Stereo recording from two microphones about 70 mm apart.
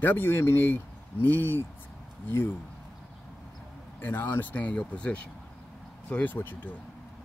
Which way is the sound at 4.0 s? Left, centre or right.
Left.